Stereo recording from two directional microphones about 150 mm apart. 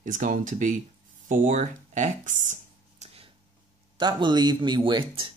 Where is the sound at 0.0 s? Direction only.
60° right (ahead or behind).